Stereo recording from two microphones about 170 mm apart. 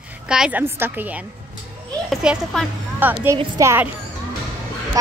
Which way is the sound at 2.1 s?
Centre (ahead or behind).